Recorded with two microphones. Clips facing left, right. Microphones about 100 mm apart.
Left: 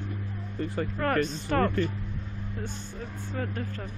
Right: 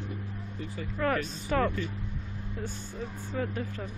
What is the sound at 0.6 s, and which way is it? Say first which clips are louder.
Speech: left 9 dB; 55° left (ahead or behind).